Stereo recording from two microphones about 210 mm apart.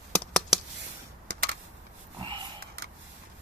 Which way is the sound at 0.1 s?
5° left (ahead or behind).